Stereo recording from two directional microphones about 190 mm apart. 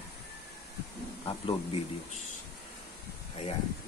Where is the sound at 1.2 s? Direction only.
30° left (ahead or behind).